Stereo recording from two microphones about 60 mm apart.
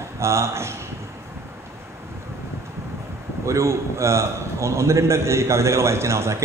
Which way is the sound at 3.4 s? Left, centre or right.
Right.